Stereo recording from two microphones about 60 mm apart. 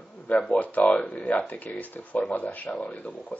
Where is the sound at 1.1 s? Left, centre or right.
Left.